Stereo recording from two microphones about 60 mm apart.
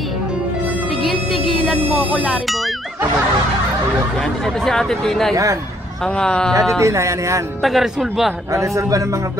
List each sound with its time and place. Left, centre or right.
1.0 s music: centre
4.6 s speech: centre
5.3 s speech: right
6.1 s speech: centre
6.8 s speech: right
7.6 s a man's voice: centre
8.5 s speech: right